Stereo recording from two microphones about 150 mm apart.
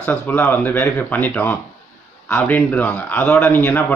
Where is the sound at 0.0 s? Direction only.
10° left (ahead or behind).